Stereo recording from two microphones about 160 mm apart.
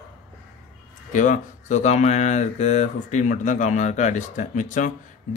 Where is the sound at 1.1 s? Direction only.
55° left (ahead or behind).